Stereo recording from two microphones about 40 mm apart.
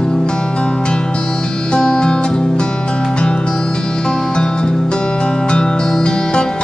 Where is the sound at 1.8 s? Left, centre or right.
Left.